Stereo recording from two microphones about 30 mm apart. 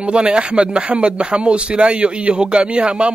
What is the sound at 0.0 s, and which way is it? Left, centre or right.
Speech, right.